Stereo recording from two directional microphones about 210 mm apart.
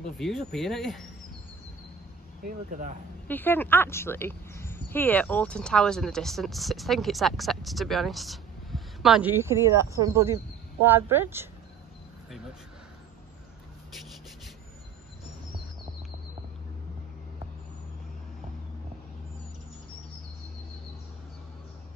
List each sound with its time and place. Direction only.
0.2 s speech: centre (ahead or behind)
2.4 s speech: 40° right (ahead or behind)
3.3 s speech: 10° left (ahead or behind); by 11.4 s 10° right (ahead or behind)